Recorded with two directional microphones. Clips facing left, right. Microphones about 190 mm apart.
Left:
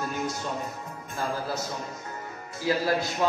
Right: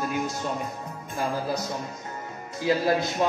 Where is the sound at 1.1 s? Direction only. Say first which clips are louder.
Right 3 dB; 15° right (ahead or behind).